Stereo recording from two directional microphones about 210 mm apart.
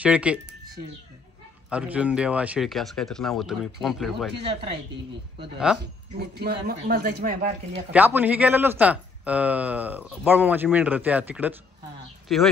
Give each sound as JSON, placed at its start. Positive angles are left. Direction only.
{"t": 0.0, "sound": "speech", "side_deg": -5}
{"t": 1.7, "sound": "speech", "side_deg": -5}
{"t": 6.1, "sound": "speech", "side_deg": -50}
{"t": 7.9, "sound": "speech", "side_deg": -10}